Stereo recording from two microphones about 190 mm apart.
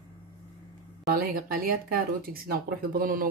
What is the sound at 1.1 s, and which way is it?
Speech, 50° right (ahead or behind).